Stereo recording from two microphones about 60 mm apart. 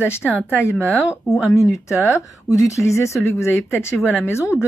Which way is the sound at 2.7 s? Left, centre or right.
Left.